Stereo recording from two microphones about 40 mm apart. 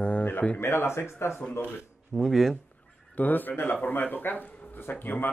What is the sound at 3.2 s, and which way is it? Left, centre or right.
A man's voice, left.